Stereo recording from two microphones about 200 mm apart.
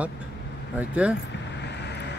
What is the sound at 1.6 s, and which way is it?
Vehicle, 55° left (ahead or behind).